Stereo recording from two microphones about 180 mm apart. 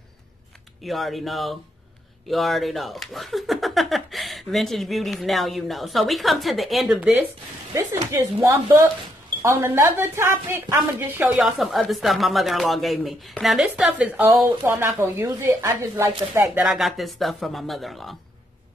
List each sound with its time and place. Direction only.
0.8 s speech: centre (ahead or behind)
7.7 s a woman's voice: 15° right (ahead or behind)
16.5 s speech: centre (ahead or behind)